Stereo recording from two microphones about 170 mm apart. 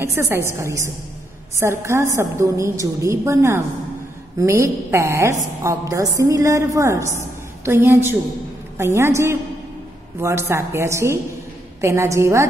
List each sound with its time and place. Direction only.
0.0 s a woman's voice: 15° right (ahead or behind)